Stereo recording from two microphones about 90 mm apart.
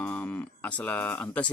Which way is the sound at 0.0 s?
20° left (ahead or behind).